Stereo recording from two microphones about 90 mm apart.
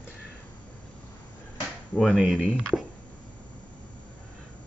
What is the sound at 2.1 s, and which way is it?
Speech, 5° right (ahead or behind).